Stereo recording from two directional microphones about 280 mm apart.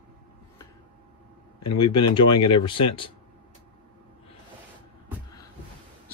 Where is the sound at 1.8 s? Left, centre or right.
Centre.